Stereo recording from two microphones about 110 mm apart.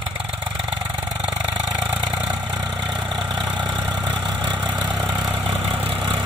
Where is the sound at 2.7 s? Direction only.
45° right (ahead or behind).